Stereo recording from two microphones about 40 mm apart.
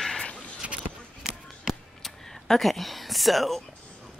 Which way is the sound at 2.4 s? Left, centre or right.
Centre.